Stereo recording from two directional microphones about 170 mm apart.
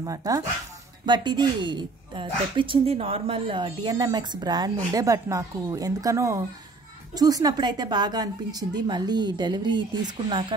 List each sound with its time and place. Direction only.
0.0 s a woman's voice: 20° right (ahead or behind)